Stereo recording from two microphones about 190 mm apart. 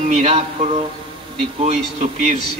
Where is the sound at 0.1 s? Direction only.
35° right (ahead or behind).